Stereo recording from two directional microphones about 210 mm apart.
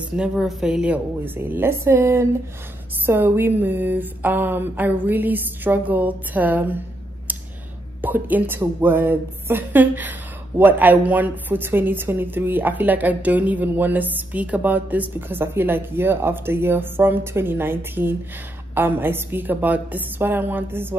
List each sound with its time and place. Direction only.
0.1 s a woman's voice: 5° right (ahead or behind)
8.0 s a woman's voice: 10° right (ahead or behind)